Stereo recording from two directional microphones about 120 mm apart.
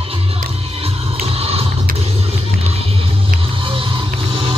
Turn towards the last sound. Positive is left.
turn(degrees=-45)  # may be behind; listen again after turning